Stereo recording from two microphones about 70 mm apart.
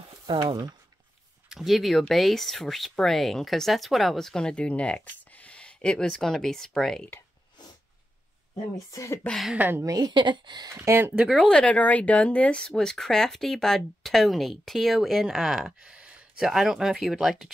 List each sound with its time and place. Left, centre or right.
0.1 s speech: right
1.5 s speech: centre
8.7 s speech: left
9.6 s speech: right
9.8 s speech: right
10.9 s speech: right
11.4 s speech: centre
16.4 s speech: centre